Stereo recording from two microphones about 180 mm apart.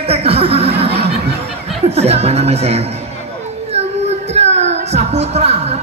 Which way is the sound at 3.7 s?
35° right (ahead or behind).